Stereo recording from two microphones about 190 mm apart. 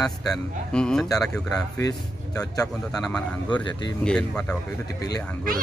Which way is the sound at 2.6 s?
5° left (ahead or behind).